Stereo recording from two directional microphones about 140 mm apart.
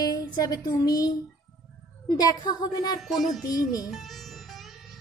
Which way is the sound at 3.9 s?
Centre (ahead or behind).